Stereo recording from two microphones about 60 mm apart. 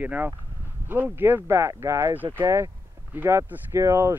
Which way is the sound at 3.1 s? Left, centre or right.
Right.